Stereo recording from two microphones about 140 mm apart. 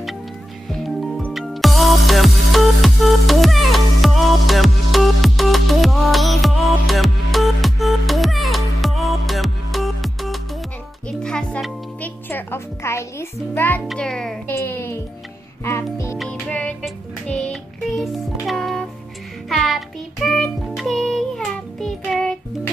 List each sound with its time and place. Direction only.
0.7 s music: centre (ahead or behind)
13.8 s a child's voice: 5° left (ahead or behind)
14.5 s music: 20° left (ahead or behind)
16.2 s music: 10° left (ahead or behind)